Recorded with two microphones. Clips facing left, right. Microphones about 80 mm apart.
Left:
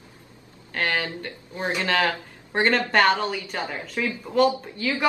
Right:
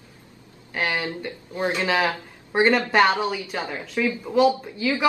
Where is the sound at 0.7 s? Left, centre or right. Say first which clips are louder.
Even; centre.